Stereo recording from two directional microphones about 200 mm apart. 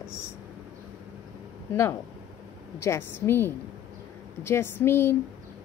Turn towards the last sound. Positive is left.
turn(degrees=10)  # may be behind; listen again after turning